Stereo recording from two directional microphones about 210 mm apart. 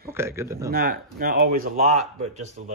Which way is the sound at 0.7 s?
45° right (ahead or behind).